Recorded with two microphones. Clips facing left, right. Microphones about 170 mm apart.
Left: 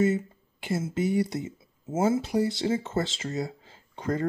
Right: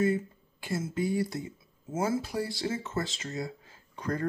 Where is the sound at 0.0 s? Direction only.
20° left (ahead or behind).